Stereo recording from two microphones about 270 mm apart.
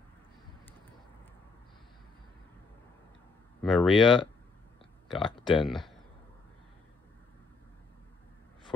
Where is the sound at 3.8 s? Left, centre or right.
Centre.